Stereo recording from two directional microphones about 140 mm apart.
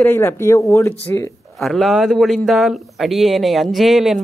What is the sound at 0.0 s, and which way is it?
Speech, 15° left (ahead or behind).